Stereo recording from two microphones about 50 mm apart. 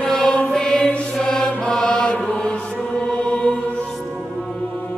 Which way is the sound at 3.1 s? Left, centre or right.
Left.